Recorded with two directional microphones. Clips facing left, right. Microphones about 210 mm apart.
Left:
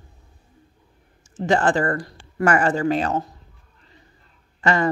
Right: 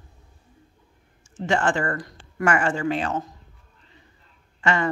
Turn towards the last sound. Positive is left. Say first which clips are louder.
# left 3 dB
turn(degrees=40)  # may be behind; listen again after turning